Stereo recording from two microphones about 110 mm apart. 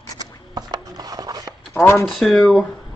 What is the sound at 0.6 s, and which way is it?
Chopping, 35° right (ahead or behind).